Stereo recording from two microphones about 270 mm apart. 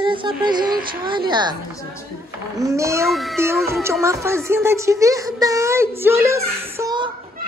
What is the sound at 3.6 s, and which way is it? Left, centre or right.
Speech, centre.